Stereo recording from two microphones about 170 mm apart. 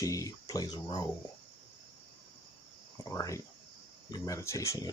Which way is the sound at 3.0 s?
20° left (ahead or behind).